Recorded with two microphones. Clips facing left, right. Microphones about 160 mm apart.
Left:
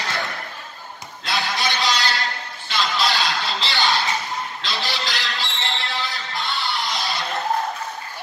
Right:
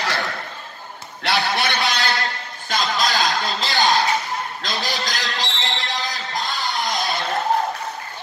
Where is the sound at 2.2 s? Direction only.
45° right (ahead or behind).